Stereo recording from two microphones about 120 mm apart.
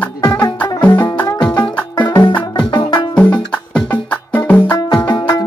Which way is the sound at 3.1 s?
10° left (ahead or behind).